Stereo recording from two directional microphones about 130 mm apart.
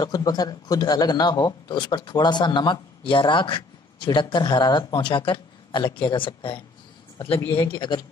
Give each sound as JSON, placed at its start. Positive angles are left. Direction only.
{"t": 0.0, "sound": "a man's voice", "side_deg": 30}